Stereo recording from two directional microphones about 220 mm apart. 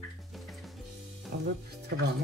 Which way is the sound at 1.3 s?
45° right (ahead or behind).